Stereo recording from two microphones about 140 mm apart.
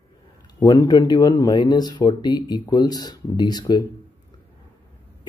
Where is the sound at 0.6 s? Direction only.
25° left (ahead or behind).